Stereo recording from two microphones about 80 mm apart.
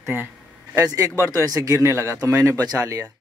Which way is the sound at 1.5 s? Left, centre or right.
Right.